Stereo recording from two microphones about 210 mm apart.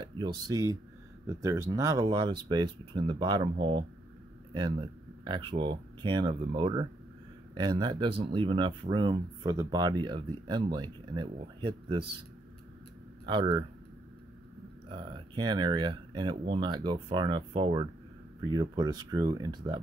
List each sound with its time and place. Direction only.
0.0 s speech: 20° right (ahead or behind)
13.2 s speech: 20° right (ahead or behind)
14.9 s speech: 25° right (ahead or behind)